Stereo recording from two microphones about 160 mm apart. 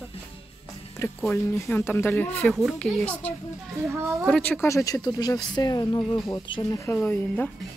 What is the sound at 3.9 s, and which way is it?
Speech, 15° right (ahead or behind).